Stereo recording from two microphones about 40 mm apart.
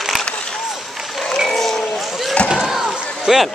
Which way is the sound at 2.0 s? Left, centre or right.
Centre.